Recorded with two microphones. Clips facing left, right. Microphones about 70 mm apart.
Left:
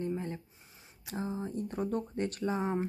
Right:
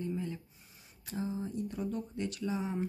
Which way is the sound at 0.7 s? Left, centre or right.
Left.